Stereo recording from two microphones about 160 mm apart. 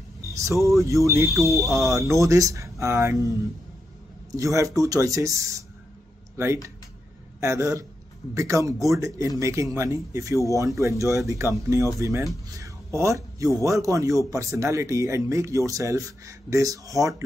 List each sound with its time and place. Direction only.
0.2 s music: 20° right (ahead or behind)
0.7 s a man's voice: 20° right (ahead or behind)
4.3 s a man's voice: 20° right (ahead or behind)